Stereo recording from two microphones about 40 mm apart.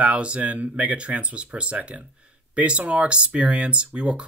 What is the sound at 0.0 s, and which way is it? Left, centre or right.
Speech, right.